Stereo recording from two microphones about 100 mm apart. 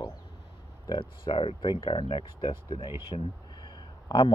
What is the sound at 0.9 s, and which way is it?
Speech, 65° left (ahead or behind).